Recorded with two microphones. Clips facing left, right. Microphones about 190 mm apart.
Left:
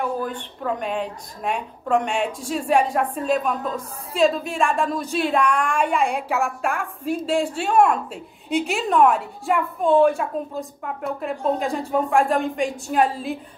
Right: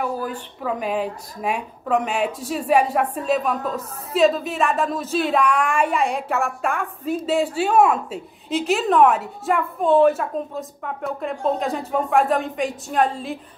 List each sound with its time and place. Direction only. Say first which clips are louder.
0.0 s a woman's voice: even; 5° right (ahead or behind)